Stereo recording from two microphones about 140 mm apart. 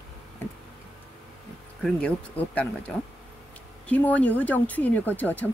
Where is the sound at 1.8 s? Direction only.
10° left (ahead or behind).